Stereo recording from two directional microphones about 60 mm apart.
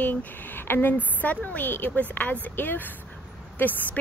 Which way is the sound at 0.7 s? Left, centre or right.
Left.